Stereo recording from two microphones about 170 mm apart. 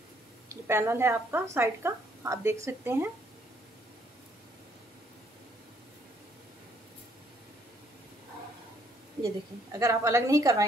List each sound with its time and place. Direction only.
0.5 s speech: 15° right (ahead or behind)
9.2 s a woman's voice: 20° right (ahead or behind)